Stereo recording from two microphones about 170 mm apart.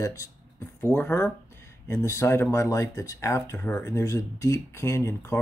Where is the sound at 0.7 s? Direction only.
15° left (ahead or behind).